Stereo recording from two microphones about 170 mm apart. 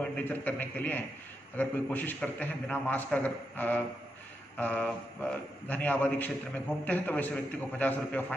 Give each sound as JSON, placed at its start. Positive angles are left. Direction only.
{"t": 0.0, "sound": "a man's voice", "side_deg": 10}